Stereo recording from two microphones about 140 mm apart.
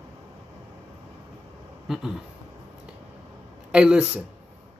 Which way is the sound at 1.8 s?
5° right (ahead or behind).